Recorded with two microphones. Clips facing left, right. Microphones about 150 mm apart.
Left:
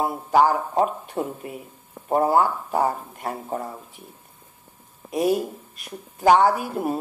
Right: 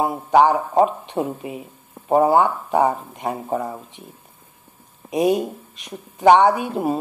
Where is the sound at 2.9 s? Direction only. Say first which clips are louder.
Right 4 dB; 15° right (ahead or behind).